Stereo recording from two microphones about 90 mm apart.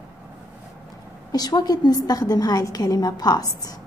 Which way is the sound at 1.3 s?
45° left (ahead or behind).